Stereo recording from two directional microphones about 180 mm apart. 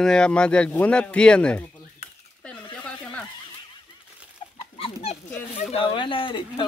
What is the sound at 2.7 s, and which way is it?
Snicker, 5° left (ahead or behind).